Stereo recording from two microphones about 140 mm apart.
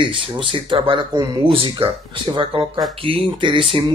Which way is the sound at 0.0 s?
35° right (ahead or behind).